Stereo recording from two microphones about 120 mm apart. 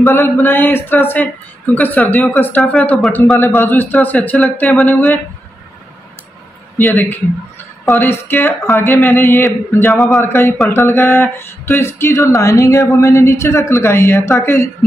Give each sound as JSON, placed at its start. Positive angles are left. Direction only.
{"t": 0.1, "sound": "a man's voice", "side_deg": 15}
{"t": 6.8, "sound": "a man's voice", "side_deg": 15}
{"t": 9.9, "sound": "a man's voice", "side_deg": 0}
{"t": 10.2, "sound": "speech", "side_deg": 20}